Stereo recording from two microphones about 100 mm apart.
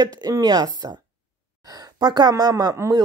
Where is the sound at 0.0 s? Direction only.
40° right (ahead or behind).